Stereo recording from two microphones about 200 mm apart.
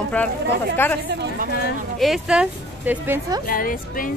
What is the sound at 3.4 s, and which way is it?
Speech, 45° left (ahead or behind).